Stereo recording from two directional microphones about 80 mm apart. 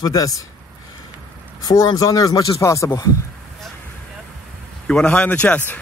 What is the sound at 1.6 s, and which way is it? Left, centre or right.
Speech, left.